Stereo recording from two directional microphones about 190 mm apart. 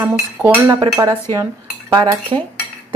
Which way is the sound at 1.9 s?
20° right (ahead or behind).